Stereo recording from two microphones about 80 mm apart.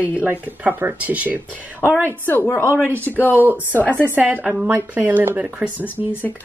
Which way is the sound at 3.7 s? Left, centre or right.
Left.